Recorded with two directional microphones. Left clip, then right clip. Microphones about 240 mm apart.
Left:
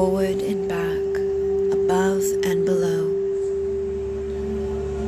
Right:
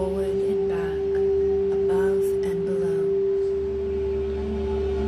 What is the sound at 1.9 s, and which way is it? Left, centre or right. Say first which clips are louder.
Music: left 1 dB; left.